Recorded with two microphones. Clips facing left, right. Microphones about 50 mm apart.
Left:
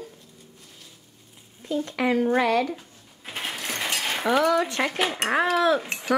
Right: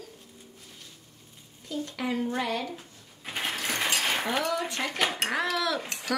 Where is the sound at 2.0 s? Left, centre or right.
Left.